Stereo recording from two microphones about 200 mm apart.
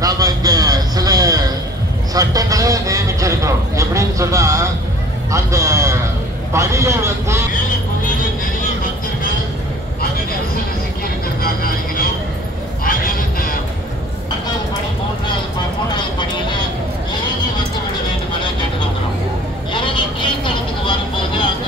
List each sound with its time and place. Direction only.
0.0 s a sound: 20° right (ahead or behind)
2.1 s a man's voice: 15° right (ahead or behind)
11.4 s vehicle: 45° left (ahead or behind)
12.8 s a sound: 45° left (ahead or behind)
16.2 s vehicle: 20° left (ahead or behind)
19.7 s vehicle: 25° left (ahead or behind)